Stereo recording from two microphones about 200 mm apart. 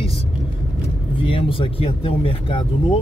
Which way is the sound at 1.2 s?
25° left (ahead or behind).